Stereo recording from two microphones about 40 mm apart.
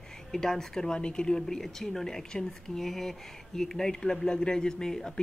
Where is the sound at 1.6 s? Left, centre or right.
Centre.